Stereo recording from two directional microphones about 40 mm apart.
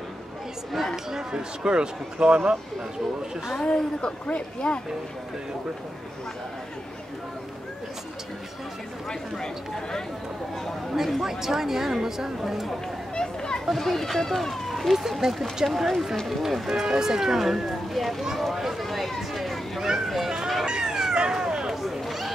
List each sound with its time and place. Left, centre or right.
0.9 s speech: centre
3.6 s speech: left
9.4 s speech: centre
11.1 s speech: centre
13.1 s children playing: centre
13.7 s speech: centre
18.8 s a sound: centre
20.1 s run: centre
20.6 s cat: centre
21.3 s a sound: centre
21.8 s a sound: centre